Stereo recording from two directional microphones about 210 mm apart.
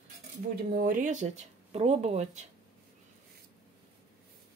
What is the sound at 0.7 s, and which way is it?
Speech, 40° right (ahead or behind).